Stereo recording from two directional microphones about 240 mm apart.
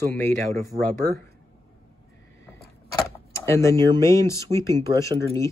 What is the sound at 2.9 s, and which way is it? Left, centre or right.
Keys jangling, centre.